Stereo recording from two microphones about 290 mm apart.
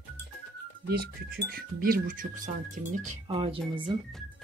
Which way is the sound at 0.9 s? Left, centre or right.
Right.